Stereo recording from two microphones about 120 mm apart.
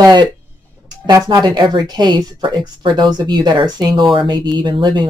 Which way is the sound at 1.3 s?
35° right (ahead or behind).